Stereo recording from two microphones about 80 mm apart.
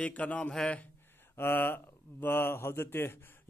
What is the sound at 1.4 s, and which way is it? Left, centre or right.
A man's voice, left.